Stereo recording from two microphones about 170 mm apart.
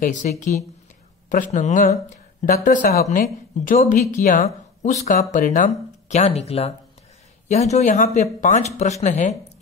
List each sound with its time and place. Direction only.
0.0 s speech: 45° left (ahead or behind)